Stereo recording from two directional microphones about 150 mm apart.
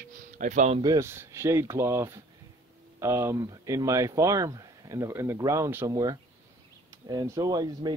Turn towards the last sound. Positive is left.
turn(degrees=-25)  # may be behind; listen again after turning